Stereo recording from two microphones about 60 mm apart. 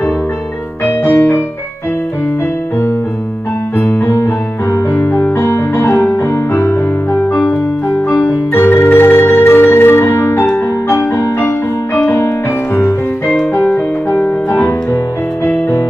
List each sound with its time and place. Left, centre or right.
1.0 s music: left
3.7 s keyboard: left
5.1 s music: left
8.6 s music: left
10.5 s keyboard: left